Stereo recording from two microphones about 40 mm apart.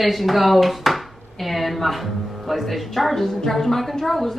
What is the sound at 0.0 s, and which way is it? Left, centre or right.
A woman's voice, centre.